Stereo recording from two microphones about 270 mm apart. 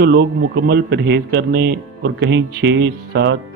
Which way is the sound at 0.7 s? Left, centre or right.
Right.